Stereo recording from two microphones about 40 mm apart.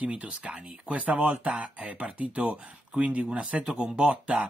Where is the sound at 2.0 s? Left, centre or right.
Right.